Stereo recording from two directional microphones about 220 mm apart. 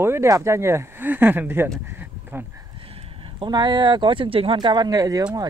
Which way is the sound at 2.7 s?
25° right (ahead or behind).